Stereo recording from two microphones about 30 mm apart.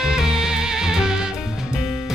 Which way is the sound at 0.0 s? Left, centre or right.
Centre.